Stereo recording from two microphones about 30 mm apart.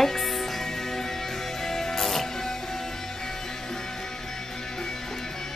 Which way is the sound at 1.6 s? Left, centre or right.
Centre.